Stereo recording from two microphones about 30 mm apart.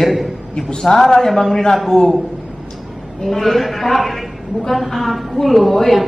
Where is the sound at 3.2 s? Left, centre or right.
Centre.